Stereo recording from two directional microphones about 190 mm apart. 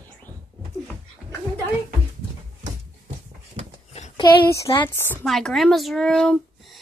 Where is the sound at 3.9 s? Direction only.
35° left (ahead or behind).